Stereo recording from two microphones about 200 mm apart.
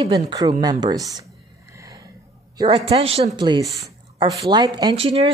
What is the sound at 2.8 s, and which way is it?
Speech, 30° right (ahead or behind).